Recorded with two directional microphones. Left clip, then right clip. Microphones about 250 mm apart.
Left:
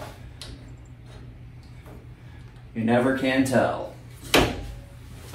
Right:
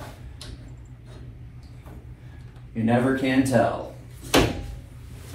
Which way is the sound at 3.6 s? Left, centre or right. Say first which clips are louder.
Even; right.